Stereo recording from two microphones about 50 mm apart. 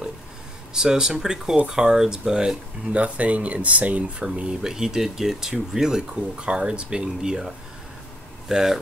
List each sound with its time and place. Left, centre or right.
0.7 s speech: centre
2.9 s speech: right; by 8.7 s centre